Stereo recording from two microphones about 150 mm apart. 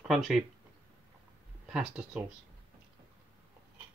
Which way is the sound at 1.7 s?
5° right (ahead or behind).